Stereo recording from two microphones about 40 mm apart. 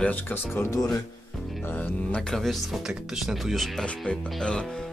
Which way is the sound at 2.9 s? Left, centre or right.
Centre.